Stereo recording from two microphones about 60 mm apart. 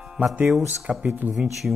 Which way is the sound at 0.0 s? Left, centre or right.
Centre.